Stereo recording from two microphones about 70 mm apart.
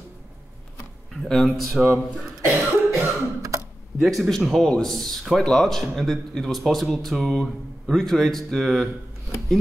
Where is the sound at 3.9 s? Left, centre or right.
Centre.